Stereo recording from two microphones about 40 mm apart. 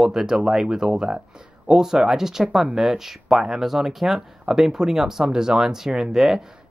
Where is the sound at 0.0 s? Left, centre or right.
Centre.